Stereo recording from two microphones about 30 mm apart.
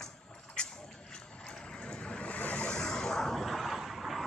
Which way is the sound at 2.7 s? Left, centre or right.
Left.